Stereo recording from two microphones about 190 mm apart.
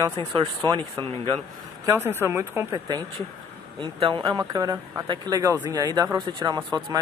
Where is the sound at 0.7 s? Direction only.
25° right (ahead or behind).